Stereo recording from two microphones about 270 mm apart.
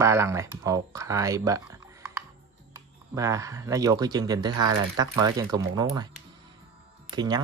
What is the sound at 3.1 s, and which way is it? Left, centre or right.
Speech, centre.